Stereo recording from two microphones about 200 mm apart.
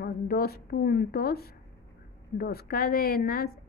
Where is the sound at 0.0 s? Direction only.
50° left (ahead or behind).